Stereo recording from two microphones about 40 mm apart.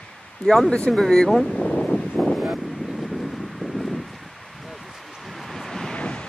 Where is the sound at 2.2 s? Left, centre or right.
Centre.